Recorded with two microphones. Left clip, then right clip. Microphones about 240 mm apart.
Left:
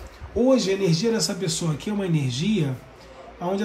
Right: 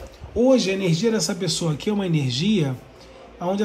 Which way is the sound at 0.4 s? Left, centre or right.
Centre.